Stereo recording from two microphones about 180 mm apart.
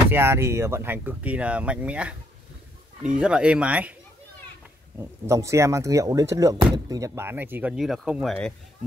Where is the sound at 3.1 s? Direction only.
5° right (ahead or behind).